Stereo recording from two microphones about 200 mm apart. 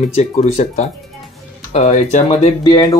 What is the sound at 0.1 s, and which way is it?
Speech, 30° left (ahead or behind).